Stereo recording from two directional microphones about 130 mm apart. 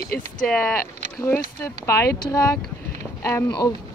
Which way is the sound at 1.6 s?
20° left (ahead or behind).